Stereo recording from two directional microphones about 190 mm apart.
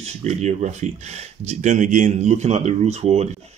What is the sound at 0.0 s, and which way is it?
Speech, 35° right (ahead or behind).